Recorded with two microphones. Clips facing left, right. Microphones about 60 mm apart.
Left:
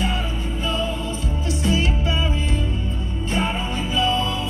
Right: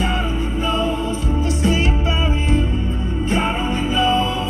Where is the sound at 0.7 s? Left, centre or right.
Right.